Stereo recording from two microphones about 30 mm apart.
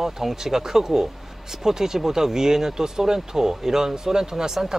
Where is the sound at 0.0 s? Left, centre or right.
Centre.